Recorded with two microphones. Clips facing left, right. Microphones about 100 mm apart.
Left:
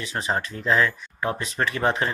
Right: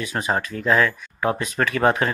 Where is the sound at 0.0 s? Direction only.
45° right (ahead or behind).